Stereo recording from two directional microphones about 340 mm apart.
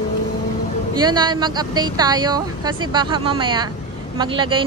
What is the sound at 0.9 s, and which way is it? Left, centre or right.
A woman's voice, centre.